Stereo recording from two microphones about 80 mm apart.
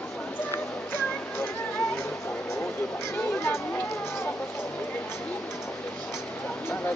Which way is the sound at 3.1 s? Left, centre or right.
Left.